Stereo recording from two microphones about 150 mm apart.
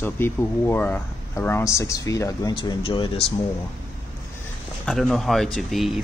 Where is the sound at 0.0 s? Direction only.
15° left (ahead or behind).